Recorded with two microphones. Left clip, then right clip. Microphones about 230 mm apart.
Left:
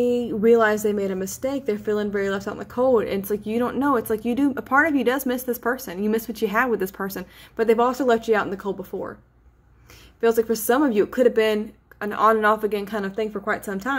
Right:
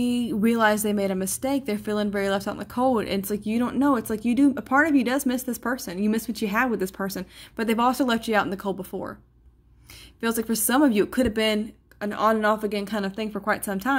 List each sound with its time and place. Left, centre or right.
0.3 s speech: right
7.7 s speech: right
10.4 s speech: right
12.8 s speech: right